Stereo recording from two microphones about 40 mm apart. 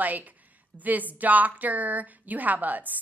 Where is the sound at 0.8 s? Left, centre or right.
Right.